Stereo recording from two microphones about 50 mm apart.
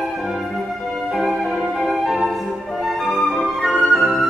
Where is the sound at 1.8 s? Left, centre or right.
Centre.